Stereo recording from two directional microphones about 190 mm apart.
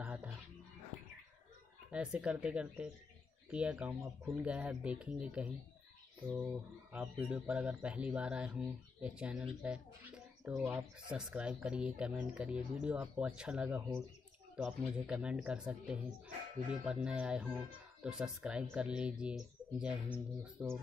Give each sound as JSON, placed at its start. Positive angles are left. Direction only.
{"t": 0.0, "sound": "dog", "side_deg": -10}
{"t": 2.1, "sound": "speech", "side_deg": -5}